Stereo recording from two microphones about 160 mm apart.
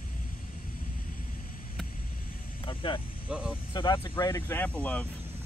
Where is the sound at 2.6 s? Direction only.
30° left (ahead or behind).